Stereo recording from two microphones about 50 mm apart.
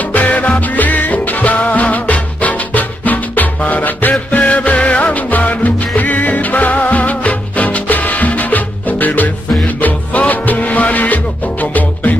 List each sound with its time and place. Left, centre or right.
0.0 s music: left